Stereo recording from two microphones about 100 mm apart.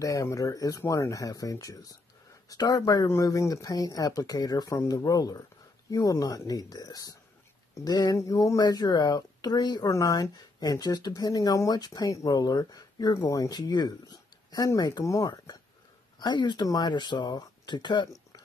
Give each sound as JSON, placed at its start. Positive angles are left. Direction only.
{"t": 0.0, "sound": "speech", "side_deg": 35}